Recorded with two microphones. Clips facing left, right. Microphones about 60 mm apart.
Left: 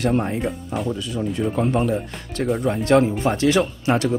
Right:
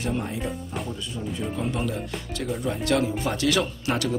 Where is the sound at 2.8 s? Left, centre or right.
Left.